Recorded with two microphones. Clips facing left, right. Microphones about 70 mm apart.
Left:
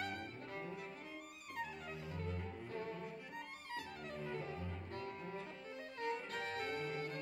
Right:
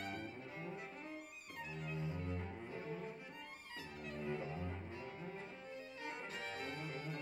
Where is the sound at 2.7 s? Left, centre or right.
Centre.